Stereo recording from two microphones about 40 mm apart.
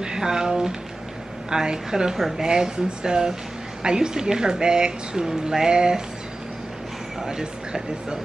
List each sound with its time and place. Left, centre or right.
0.0 s speech: centre
7.2 s speech: centre